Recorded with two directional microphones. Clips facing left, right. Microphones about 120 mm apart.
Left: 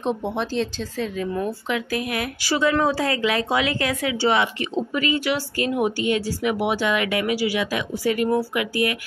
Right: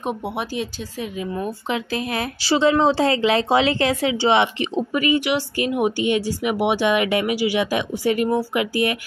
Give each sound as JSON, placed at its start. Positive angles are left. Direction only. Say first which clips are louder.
{"t": 0.0, "sound": "speech", "louder": "left 1 dB", "side_deg": -10}